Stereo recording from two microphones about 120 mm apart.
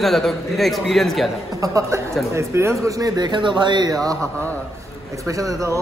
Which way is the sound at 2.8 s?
35° right (ahead or behind).